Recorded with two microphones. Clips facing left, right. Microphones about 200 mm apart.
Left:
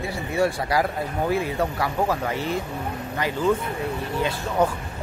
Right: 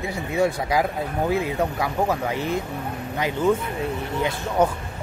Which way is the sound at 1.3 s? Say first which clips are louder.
Even; 15° right (ahead or behind).